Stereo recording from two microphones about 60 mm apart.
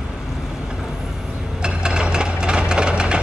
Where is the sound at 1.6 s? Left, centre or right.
Centre.